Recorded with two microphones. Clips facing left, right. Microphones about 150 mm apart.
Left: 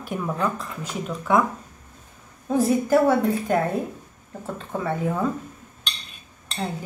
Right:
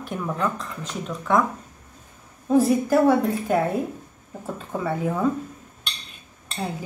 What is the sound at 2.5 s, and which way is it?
A woman's voice, centre (ahead or behind).